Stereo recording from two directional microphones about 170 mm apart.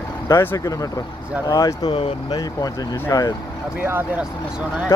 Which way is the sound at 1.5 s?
20° left (ahead or behind).